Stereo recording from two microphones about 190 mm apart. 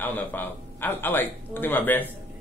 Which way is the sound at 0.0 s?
10° left (ahead or behind).